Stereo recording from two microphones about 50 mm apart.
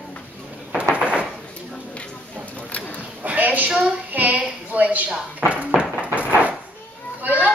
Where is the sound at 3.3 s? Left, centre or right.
Right.